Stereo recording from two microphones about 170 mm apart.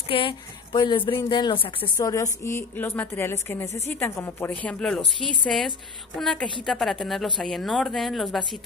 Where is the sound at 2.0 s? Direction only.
20° left (ahead or behind).